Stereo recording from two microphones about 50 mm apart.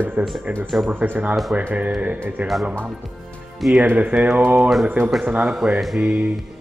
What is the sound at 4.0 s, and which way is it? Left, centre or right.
Speech, right.